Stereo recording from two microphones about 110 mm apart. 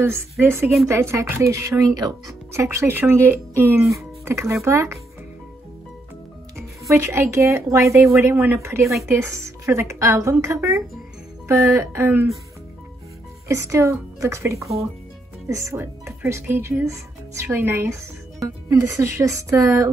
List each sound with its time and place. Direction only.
0.0 s speech: 25° right (ahead or behind)
6.9 s speech: 25° right (ahead or behind)
13.5 s speech: 30° right (ahead or behind)